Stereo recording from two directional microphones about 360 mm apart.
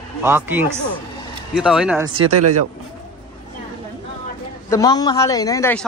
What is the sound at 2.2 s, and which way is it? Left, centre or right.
Speech, right.